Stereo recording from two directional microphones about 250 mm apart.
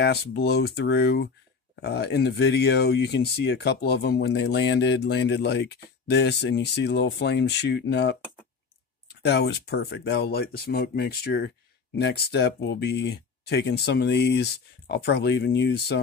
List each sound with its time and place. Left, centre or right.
0.0 s speech: left